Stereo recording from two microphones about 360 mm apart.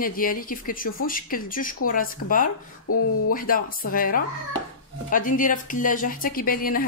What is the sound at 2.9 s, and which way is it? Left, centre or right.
Speech, left.